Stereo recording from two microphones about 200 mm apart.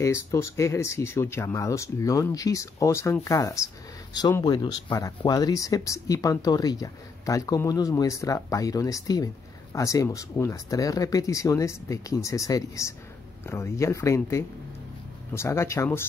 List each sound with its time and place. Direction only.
0.0 s speech: 15° left (ahead or behind)